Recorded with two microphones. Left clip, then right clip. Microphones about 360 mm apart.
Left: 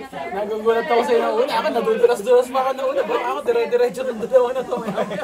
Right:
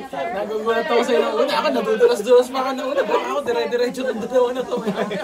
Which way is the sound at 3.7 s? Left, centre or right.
Centre.